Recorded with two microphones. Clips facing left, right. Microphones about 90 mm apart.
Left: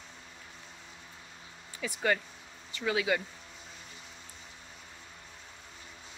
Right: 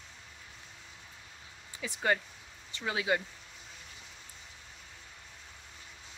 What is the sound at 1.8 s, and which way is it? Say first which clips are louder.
Speech: left 1 dB; 20° right (ahead or behind).